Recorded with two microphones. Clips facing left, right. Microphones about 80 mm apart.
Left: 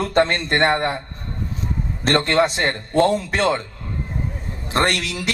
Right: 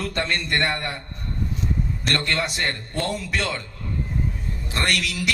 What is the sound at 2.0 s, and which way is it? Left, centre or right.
Speech, left.